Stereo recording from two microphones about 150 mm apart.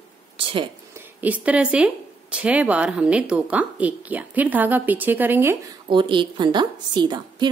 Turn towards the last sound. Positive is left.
turn(degrees=-30)  # may be behind; listen again after turning